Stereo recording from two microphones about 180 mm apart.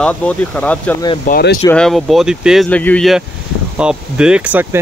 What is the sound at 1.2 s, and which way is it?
Speech, 55° left (ahead or behind).